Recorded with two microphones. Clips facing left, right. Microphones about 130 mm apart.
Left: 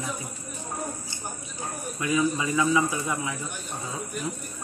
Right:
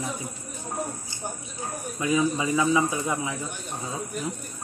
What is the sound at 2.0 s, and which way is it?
Speech, 20° right (ahead or behind).